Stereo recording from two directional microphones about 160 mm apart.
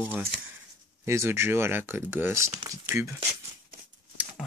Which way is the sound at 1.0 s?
15° right (ahead or behind).